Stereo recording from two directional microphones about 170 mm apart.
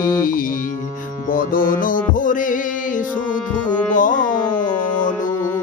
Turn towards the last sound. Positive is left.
turn(degrees=50)  # may be behind; listen again after turning